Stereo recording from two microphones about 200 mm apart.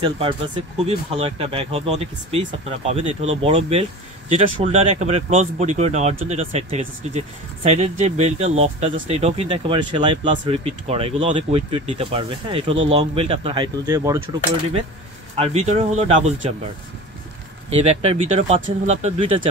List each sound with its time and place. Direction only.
0.0 s speech: 25° right (ahead or behind)
13.8 s speech: 15° right (ahead or behind)
15.3 s speech: 30° right (ahead or behind)
17.6 s speech: 30° right (ahead or behind)